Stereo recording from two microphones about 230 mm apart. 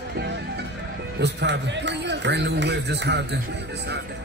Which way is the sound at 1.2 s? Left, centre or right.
Right.